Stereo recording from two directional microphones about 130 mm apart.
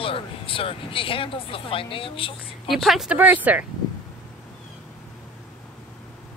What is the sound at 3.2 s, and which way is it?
Speech, 15° right (ahead or behind).